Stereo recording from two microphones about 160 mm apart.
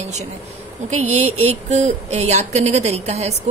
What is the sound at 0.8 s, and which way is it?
Speech, 45° right (ahead or behind).